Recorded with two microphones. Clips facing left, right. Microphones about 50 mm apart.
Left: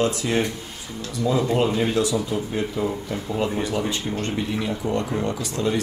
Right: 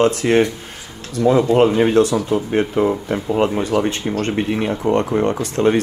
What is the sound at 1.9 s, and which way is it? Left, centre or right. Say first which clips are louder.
Speech: right 7 dB; right.